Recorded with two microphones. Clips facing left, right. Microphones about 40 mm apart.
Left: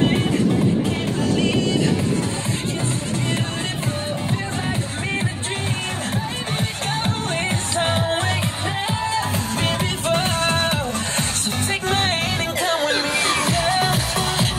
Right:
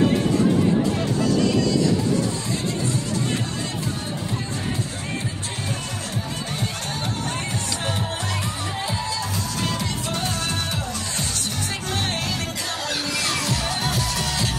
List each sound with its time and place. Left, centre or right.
6.5 s music: left